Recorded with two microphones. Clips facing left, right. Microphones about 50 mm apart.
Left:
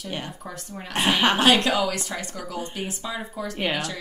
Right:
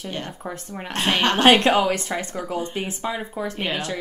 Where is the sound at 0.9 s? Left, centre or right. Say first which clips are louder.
Even; centre.